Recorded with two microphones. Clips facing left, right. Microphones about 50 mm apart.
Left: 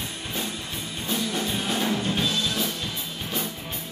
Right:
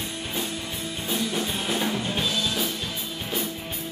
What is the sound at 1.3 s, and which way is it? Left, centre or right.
Drum kit, centre.